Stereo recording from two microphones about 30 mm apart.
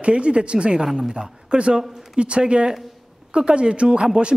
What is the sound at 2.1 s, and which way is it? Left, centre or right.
Speech, right.